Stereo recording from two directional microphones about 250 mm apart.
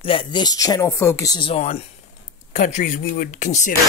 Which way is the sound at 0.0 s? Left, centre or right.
Left.